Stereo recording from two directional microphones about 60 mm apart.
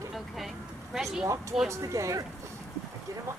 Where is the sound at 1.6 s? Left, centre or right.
Right.